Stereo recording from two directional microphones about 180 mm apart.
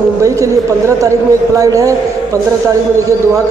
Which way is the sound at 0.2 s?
15° right (ahead or behind).